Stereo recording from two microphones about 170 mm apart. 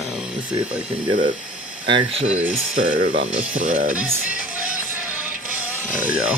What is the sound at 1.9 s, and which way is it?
Speech, 35° right (ahead or behind).